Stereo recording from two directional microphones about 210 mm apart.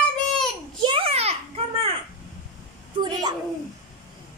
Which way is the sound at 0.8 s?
25° right (ahead or behind).